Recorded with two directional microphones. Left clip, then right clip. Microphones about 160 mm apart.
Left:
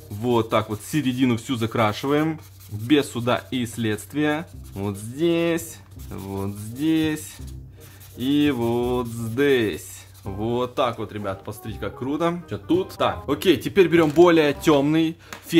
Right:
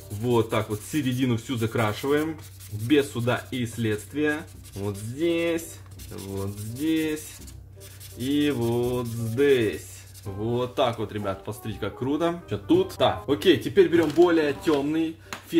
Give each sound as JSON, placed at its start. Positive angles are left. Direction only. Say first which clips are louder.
{"t": 0.2, "sound": "speech", "louder": "left 3 dB", "side_deg": 45}
{"t": 6.3, "sound": "music", "louder": "left 3 dB", "side_deg": 45}
{"t": 8.3, "sound": "speech", "louder": "left 3 dB", "side_deg": 45}
{"t": 10.5, "sound": "speech", "louder": "left 1 dB", "side_deg": 30}
{"t": 13.0, "sound": "speech", "louder": "even", "side_deg": 30}